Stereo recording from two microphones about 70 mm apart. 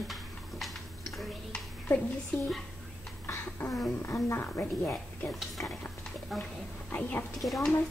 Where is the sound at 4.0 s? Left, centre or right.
Left.